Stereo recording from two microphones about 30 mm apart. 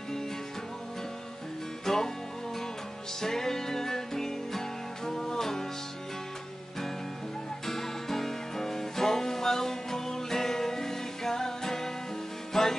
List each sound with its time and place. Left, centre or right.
1.9 s music: centre
3.2 s music: centre
7.6 s music: centre